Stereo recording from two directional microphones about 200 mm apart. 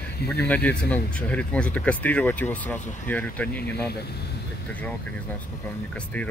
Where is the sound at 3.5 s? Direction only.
50° left (ahead or behind).